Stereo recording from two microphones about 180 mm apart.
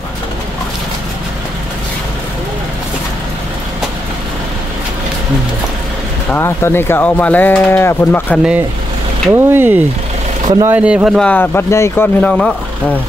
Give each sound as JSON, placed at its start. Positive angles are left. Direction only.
{"t": 6.3, "sound": "speech", "side_deg": 15}
{"t": 9.3, "sound": "speech", "side_deg": -10}
{"t": 10.8, "sound": "speech", "side_deg": -5}